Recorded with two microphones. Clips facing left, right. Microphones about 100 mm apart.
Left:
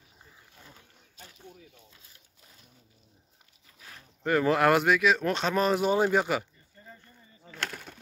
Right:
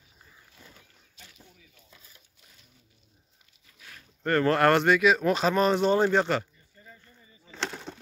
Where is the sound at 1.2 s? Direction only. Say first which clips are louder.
Left 3 dB; 40° left (ahead or behind).